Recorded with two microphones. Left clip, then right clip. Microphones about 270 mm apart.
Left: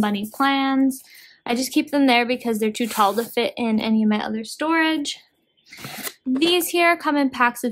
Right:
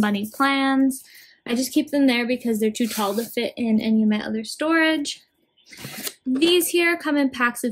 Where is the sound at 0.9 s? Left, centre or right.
Centre.